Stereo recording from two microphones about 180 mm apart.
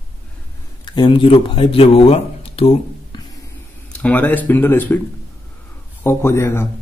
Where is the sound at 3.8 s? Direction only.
5° left (ahead or behind).